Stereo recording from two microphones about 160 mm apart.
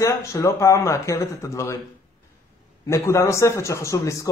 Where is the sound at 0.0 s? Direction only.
20° left (ahead or behind).